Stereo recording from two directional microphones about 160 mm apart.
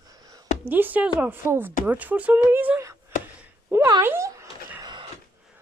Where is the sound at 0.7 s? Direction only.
10° right (ahead or behind).